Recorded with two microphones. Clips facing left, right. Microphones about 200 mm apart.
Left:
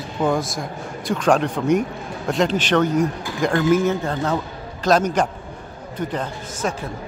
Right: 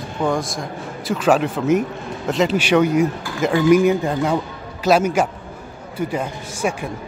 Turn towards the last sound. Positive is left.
turn(degrees=-10)  # may be behind; listen again after turning